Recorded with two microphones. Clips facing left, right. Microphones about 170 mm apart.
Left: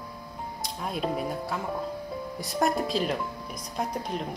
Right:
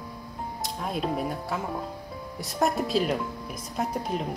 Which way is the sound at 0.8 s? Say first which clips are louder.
Right 1 dB; centre (ahead or behind).